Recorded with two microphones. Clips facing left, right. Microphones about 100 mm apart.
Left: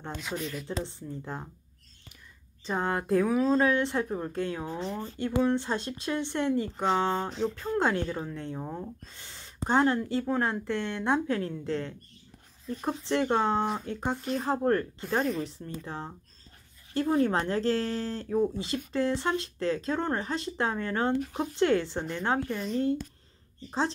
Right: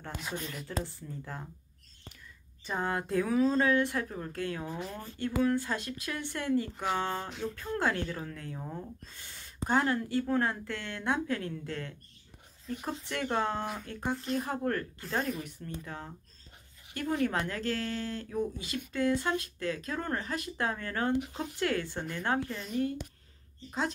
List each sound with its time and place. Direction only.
0.7 s speech: 20° left (ahead or behind)
2.6 s speech: 20° left (ahead or behind)
13.0 s speech: 25° left (ahead or behind)